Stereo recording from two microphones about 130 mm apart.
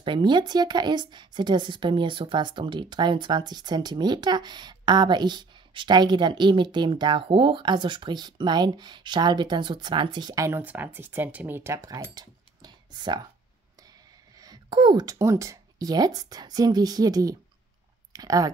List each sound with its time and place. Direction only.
0.0 s a woman's voice: 40° right (ahead or behind)
10.6 s speech: 15° right (ahead or behind); by 13.3 s 35° right (ahead or behind)
14.4 s speech: 35° right (ahead or behind)